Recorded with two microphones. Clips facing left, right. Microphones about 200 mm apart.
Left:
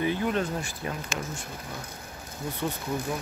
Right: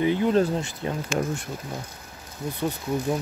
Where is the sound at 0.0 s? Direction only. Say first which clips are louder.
Right 5 dB; 20° right (ahead or behind).